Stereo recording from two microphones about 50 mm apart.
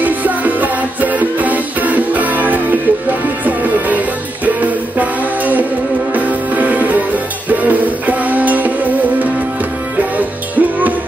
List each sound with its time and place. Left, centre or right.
0.0 s music: right
4.6 s music: right